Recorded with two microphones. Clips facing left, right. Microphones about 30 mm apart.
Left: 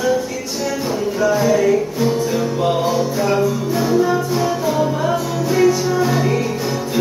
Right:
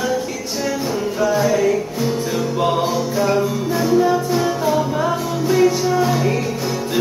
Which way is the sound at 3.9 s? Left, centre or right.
Centre.